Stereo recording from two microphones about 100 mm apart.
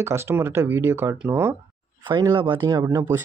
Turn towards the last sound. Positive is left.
turn(degrees=-35)  # may be behind; listen again after turning